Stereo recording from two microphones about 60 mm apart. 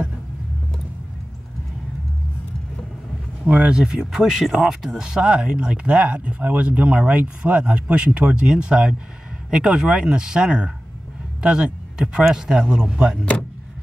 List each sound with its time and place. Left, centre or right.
3.4 s speech: centre